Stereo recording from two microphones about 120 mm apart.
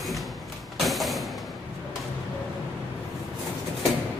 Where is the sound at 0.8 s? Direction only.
Centre (ahead or behind).